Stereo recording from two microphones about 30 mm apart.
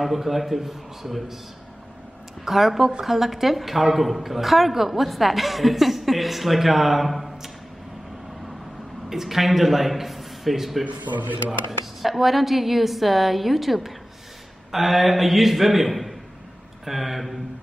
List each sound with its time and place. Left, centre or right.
0.0 s a woman's voice: centre
2.4 s a woman's voice: centre
9.1 s a man's voice: centre
11.1 s speech: right
11.8 s a woman's voice: centre